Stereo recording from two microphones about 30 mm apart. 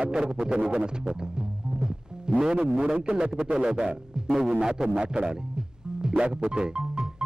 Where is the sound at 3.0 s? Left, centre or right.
Right.